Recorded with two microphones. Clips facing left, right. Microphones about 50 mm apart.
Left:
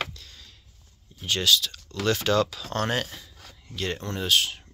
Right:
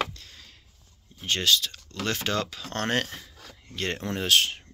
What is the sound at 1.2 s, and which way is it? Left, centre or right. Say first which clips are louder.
Speech: left 1 dB; right.